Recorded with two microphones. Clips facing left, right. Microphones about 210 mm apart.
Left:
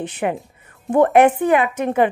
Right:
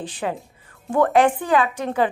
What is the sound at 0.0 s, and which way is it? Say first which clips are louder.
Speech: left 4 dB; 20° left (ahead or behind).